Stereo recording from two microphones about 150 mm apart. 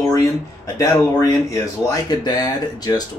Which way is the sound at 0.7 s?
20° left (ahead or behind).